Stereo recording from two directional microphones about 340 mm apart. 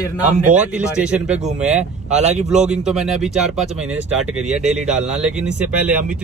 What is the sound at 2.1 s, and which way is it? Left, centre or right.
Speech, centre.